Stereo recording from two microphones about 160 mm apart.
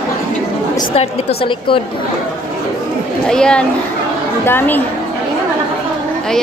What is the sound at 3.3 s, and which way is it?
A woman's voice, 5° left (ahead or behind).